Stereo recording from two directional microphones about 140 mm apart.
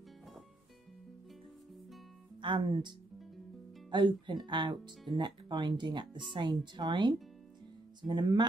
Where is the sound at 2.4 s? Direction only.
35° right (ahead or behind).